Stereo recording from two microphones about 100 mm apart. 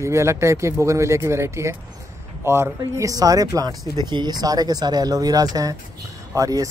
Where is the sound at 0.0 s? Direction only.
30° right (ahead or behind).